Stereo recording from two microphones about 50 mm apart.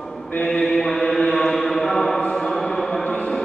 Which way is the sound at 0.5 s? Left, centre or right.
Centre.